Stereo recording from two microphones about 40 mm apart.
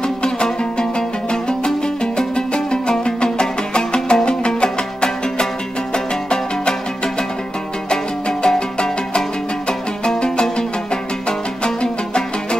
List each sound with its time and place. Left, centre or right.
0.2 s music: left
7.9 s music: centre